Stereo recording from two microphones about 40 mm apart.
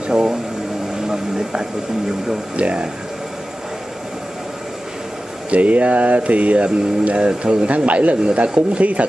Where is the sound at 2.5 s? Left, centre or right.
Right.